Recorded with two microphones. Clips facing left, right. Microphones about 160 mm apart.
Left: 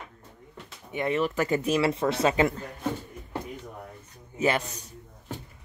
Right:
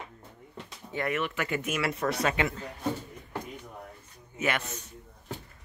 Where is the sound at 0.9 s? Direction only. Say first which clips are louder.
Left 3 dB; 20° left (ahead or behind).